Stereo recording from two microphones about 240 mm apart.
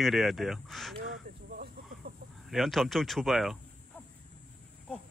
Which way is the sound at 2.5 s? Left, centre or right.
Centre.